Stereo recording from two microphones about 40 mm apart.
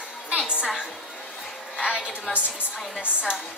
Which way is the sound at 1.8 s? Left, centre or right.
Right.